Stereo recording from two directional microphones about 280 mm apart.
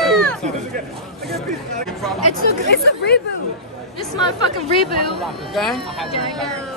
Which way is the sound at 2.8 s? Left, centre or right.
Left.